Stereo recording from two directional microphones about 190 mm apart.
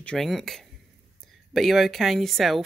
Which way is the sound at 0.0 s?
5° left (ahead or behind).